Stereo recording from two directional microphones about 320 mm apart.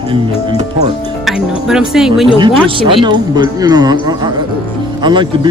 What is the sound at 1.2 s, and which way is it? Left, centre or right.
Speech, centre.